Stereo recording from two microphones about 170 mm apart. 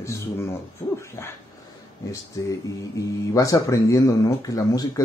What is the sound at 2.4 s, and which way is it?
Speech, 20° left (ahead or behind).